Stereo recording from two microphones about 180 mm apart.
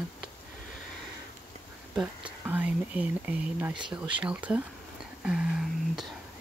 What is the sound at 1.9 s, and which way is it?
Speech, 10° right (ahead or behind).